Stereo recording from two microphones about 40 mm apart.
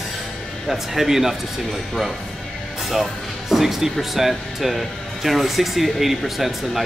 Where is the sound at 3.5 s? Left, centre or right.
Centre.